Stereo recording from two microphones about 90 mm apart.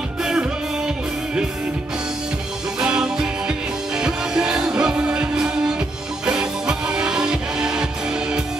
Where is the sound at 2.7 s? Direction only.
10° right (ahead or behind).